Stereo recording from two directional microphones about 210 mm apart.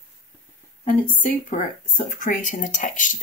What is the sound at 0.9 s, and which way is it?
Speech, 40° left (ahead or behind).